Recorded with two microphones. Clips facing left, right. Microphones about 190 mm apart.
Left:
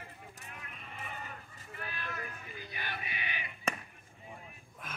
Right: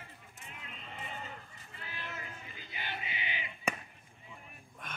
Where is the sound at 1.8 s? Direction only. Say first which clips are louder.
Left 3 dB; 20° right (ahead or behind).